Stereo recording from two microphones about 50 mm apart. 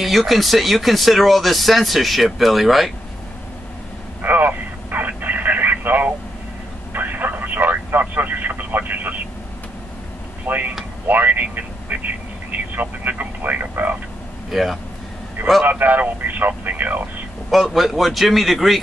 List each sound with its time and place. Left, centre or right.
0.0 s speech: centre
4.2 s radio: right
6.9 s a sound: right
10.4 s speech: right
11.1 s radio: right
14.5 s a man's voice: centre
15.6 s speech: right
17.5 s speech: centre